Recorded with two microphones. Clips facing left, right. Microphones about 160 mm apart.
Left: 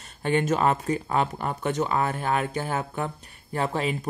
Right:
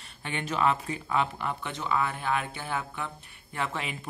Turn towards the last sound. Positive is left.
turn(degrees=40)  # may be behind; listen again after turning